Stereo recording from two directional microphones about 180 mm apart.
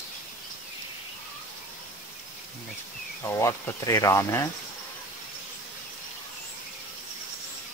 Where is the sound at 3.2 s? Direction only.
15° left (ahead or behind).